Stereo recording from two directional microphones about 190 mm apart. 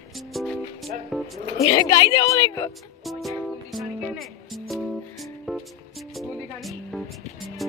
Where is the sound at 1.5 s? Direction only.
25° left (ahead or behind).